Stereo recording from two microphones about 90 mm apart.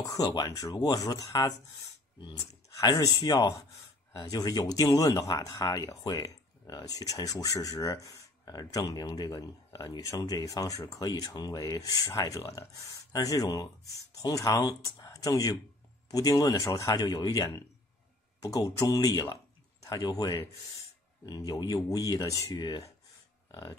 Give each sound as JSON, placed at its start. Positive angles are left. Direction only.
{"t": 0.0, "sound": "speech", "side_deg": 40}
{"t": 2.8, "sound": "speech", "side_deg": 40}